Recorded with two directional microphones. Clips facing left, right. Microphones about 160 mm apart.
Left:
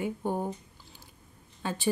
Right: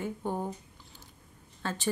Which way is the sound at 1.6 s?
15° left (ahead or behind).